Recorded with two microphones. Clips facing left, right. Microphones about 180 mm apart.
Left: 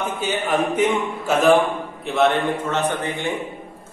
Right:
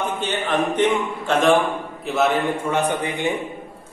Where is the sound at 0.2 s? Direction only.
10° left (ahead or behind); by 3.3 s 15° right (ahead or behind).